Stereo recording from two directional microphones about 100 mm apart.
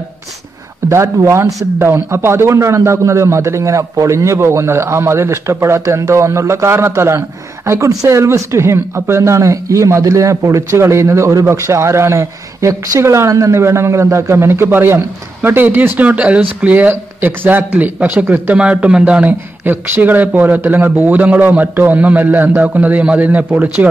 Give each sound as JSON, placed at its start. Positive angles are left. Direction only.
{"t": 0.8, "sound": "a man's voice", "side_deg": -30}